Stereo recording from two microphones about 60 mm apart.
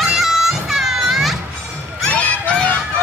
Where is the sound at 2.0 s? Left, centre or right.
Left.